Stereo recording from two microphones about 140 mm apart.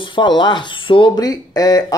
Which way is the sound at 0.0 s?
35° left (ahead or behind).